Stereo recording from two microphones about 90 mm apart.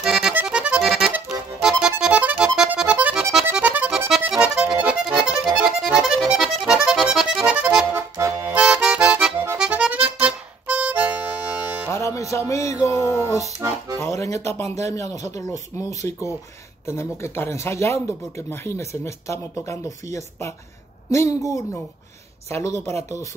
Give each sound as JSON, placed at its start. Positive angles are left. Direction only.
{"t": 0.0, "sound": "accordion", "side_deg": -5}
{"t": 0.8, "sound": "accordion", "side_deg": 0}
{"t": 1.3, "sound": "music", "side_deg": -5}
{"t": 2.8, "sound": "accordion", "side_deg": -15}
{"t": 5.6, "sound": "music", "side_deg": -10}
{"t": 6.6, "sound": "accordion", "side_deg": -5}
{"t": 8.5, "sound": "music", "side_deg": -10}
{"t": 11.9, "sound": "music", "side_deg": 35}
{"t": 13.9, "sound": "speech", "side_deg": 30}